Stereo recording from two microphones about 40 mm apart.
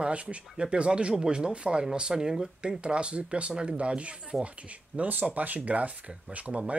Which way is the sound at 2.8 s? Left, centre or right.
Right.